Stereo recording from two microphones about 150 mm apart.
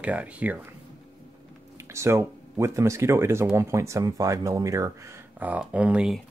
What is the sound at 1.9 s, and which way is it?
Speech, 20° right (ahead or behind).